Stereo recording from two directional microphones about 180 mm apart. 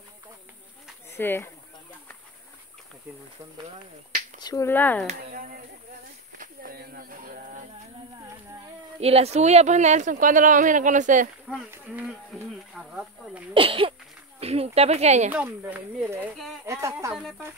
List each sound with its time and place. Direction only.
1.1 s speech: 10° left (ahead or behind)
4.4 s speech: 20° left (ahead or behind)
5.0 s speech: 50° right (ahead or behind)
9.0 s speech: 35° right (ahead or behind)
11.5 s speech: 5° right (ahead or behind)
13.5 s speech: 30° right (ahead or behind)
15.3 s speech: 10° right (ahead or behind)
16.2 s speech: centre (ahead or behind)
16.6 s speech: 15° right (ahead or behind)
17.1 s speech: 5° right (ahead or behind)